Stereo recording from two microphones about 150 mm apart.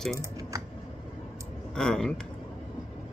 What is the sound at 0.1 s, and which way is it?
Typing, 20° right (ahead or behind).